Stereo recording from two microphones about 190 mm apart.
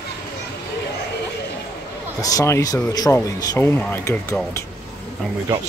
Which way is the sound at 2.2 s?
15° left (ahead or behind).